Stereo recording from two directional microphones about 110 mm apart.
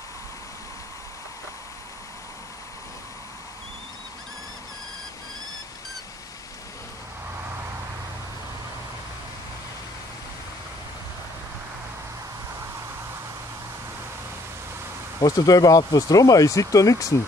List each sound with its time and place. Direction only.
15.2 s speech: 35° left (ahead or behind)